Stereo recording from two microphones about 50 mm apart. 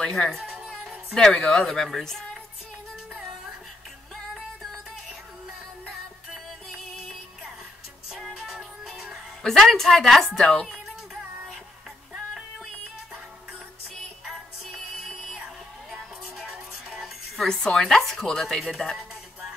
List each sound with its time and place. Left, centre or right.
0.0 s speech: centre
8.1 s music: centre
9.4 s a woman's voice: centre
10.3 s speech: centre
15.0 s music: centre
15.4 s music: centre
17.4 s speech: centre